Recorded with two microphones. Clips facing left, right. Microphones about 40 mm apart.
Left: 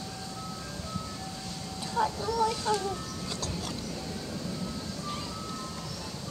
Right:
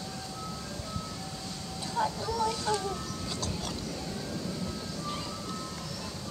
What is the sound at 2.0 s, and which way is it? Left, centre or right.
Speech, centre.